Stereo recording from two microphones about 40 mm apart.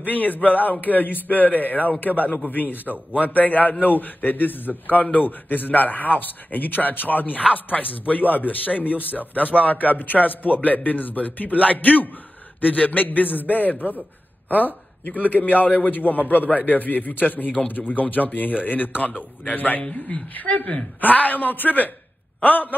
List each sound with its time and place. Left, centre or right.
0.0 s a man's voice: left
19.8 s a man's voice: left
21.0 s a man's voice: left